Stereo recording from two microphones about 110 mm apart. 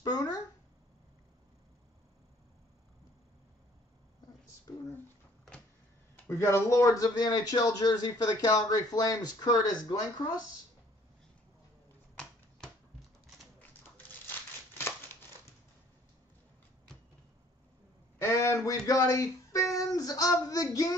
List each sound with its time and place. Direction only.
0.0 s a sound: 35° left (ahead or behind)
4.7 s speech: 25° left (ahead or behind)
6.1 s speech: 25° left (ahead or behind); by 10.3 s 40° left (ahead or behind)
12.2 s typewriter: 5° left (ahead or behind)
14.7 s scissors: 20° left (ahead or behind)
18.2 s a sound: 25° left (ahead or behind)
18.9 s speech: 30° left (ahead or behind)